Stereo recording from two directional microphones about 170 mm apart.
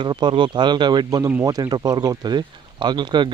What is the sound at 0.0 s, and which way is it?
Speech, 25° right (ahead or behind).